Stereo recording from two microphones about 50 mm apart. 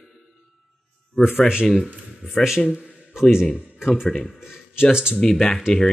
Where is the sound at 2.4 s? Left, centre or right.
Centre.